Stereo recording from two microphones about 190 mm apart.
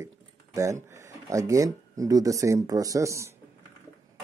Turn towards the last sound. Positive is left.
turn(degrees=-15)  # may be behind; listen again after turning